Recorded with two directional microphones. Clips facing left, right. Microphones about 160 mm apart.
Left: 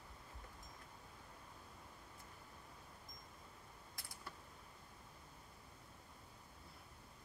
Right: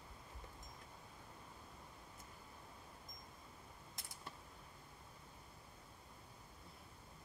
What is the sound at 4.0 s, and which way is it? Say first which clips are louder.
Mechanisms: even; 20° right (ahead or behind).